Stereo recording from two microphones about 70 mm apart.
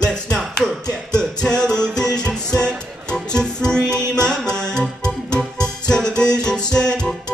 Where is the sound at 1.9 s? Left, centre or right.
Centre.